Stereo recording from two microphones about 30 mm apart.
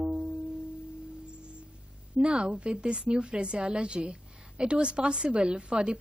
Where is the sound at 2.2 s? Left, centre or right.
Right.